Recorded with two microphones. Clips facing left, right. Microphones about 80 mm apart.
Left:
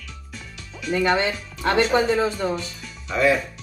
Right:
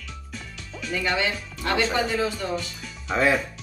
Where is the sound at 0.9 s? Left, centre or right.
Left.